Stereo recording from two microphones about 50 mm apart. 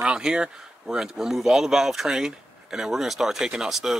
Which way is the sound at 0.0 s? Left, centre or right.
Centre.